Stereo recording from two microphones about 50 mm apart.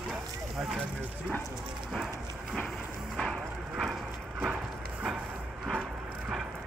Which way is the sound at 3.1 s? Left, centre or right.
Centre.